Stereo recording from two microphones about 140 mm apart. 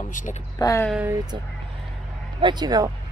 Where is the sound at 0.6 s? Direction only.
25° left (ahead or behind).